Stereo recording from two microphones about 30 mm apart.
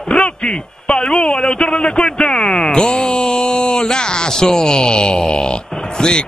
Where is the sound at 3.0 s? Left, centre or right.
Centre.